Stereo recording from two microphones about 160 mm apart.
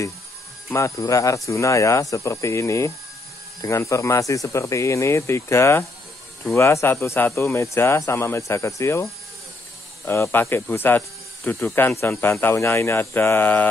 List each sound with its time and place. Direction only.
0.7 s speech: 20° left (ahead or behind)